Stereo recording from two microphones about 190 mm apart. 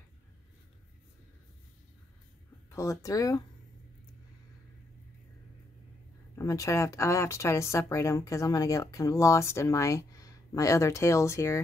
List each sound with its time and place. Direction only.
2.7 s speech: 15° left (ahead or behind)
6.3 s speech: 15° left (ahead or behind)